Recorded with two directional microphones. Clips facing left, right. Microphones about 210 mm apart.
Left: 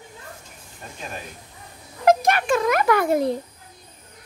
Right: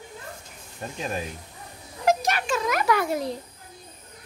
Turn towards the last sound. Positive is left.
turn(degrees=55)  # may be behind; listen again after turning